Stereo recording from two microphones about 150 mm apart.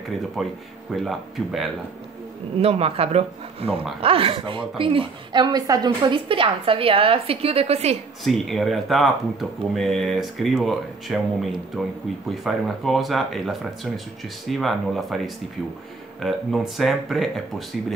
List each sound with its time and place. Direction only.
0.4 s speech: centre (ahead or behind)
2.6 s a woman's voice: 40° right (ahead or behind)
8.2 s speech: centre (ahead or behind)